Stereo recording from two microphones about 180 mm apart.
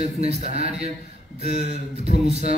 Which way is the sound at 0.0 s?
35° right (ahead or behind).